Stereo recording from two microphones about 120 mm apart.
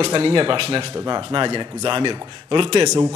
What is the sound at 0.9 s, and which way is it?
Speech, 35° right (ahead or behind).